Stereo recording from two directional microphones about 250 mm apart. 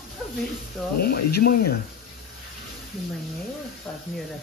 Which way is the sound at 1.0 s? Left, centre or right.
Left.